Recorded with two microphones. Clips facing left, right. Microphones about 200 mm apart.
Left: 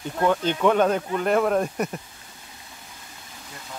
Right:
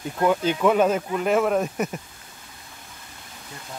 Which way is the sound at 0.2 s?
10° right (ahead or behind).